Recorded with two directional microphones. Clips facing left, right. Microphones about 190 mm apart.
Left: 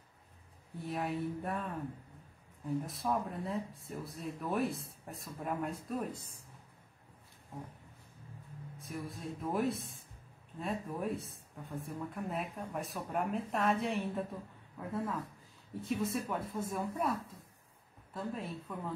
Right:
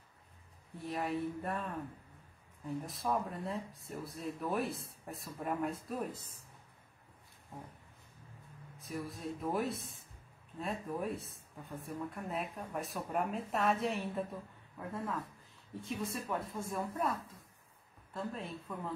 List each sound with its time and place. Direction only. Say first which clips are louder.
0.7 s speech: even; centre (ahead or behind)
8.7 s speech: right 1 dB; centre (ahead or behind)
18.1 s speech: left 1 dB; centre (ahead or behind)